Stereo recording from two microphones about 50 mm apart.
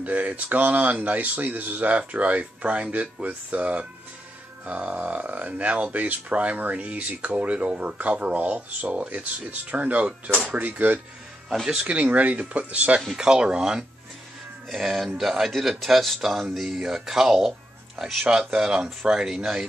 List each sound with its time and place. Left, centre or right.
0.0 s speech: right
13.1 s speech: centre
14.7 s speech: centre